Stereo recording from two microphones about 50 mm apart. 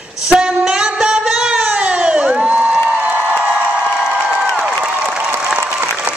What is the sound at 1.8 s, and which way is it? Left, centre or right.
Crowd, right.